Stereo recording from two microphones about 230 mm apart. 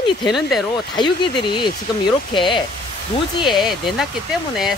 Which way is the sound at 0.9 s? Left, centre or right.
Centre.